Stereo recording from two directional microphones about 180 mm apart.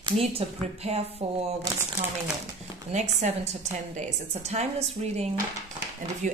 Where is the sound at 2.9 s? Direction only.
35° right (ahead or behind).